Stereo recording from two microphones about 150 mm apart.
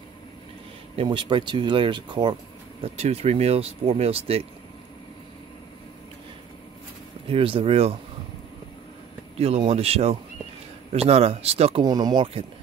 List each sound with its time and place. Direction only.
0.9 s speech: 30° right (ahead or behind)
2.8 s speech: 45° right (ahead or behind)
7.2 s speech: 35° right (ahead or behind)
9.4 s speech: 40° right (ahead or behind)
11.8 s speech: 25° right (ahead or behind)